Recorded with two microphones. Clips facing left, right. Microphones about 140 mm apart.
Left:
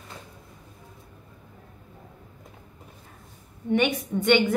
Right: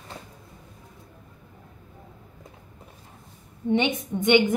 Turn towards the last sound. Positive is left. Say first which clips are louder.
# right 1 dB
turn(degrees=-20)  # may be behind; listen again after turning